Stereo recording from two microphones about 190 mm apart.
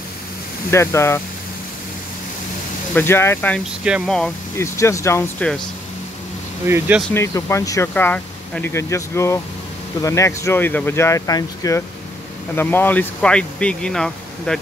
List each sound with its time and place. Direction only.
0.7 s speech: 15° left (ahead or behind)
2.9 s speech: 10° left (ahead or behind)
3.8 s speech: 5° right (ahead or behind)
4.6 s speech: 15° left (ahead or behind)
6.7 s speech: 5° right (ahead or behind)
7.2 s speech: 15° left (ahead or behind)